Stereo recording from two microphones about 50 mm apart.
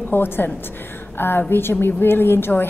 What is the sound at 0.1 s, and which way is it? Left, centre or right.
A woman's voice, left.